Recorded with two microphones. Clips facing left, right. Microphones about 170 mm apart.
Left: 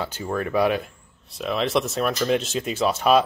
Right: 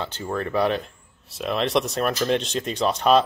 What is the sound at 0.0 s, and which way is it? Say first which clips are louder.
Speech: left 1 dB; 10° left (ahead or behind).